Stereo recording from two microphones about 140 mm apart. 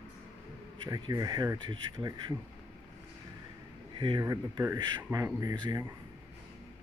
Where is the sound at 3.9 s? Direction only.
35° right (ahead or behind).